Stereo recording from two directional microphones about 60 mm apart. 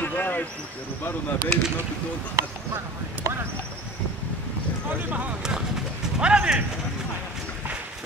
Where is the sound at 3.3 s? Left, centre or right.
Right.